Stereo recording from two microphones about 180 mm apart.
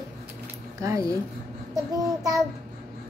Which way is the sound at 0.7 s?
20° right (ahead or behind).